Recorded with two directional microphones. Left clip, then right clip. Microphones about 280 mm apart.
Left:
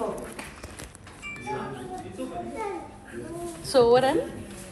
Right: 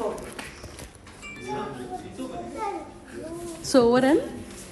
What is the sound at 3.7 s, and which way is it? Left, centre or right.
Speech, right.